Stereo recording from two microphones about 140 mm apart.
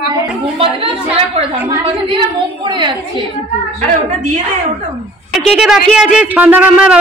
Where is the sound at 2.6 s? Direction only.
35° right (ahead or behind).